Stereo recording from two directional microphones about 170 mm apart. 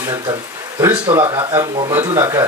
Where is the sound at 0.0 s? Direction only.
20° right (ahead or behind).